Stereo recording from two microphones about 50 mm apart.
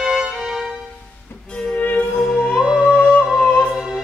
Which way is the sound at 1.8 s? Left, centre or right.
Left.